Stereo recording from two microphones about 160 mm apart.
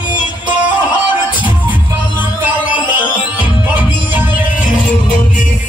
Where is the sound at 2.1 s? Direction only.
10° right (ahead or behind).